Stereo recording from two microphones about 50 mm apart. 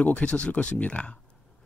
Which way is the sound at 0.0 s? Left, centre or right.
Left.